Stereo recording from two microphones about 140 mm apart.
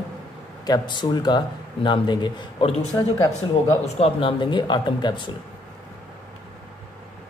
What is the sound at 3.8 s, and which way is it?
Speech, 45° left (ahead or behind).